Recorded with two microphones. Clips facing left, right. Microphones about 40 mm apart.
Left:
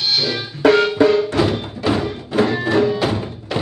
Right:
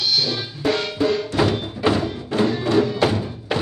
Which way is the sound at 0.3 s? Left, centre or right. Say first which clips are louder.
Left 8 dB; left.